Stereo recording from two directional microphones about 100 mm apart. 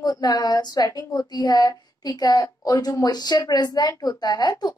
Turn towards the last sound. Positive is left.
turn(degrees=45)  # may be behind; listen again after turning